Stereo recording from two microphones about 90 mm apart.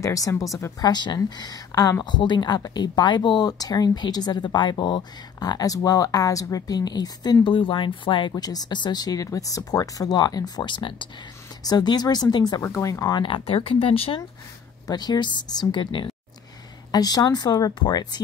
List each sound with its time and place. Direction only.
0.0 s speech: 40° left (ahead or behind)
0.7 s speech: 50° left (ahead or behind)
2.0 s speech: 55° left (ahead or behind)
7.4 s speech: 70° left (ahead or behind)
8.3 s speech: 45° left (ahead or behind); by 11.1 s 65° left (ahead or behind)
11.6 s speech: 50° left (ahead or behind)
12.6 s speech: 35° left (ahead or behind)
13.1 s speech: 70° left (ahead or behind); by 14.2 s 90° left
14.9 s speech: 50° left (ahead or behind)
16.9 s speech: 45° left (ahead or behind)